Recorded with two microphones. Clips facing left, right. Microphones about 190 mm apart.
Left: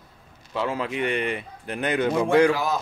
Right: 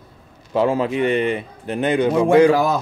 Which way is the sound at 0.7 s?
35° right (ahead or behind).